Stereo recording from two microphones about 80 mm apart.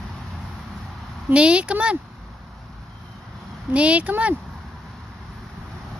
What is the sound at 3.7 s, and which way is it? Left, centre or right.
Speech, centre.